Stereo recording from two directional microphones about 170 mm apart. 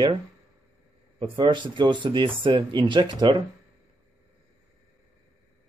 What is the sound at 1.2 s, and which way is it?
Speech, 30° right (ahead or behind).